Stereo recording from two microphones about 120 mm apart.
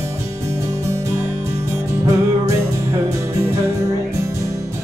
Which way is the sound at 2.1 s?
25° right (ahead or behind).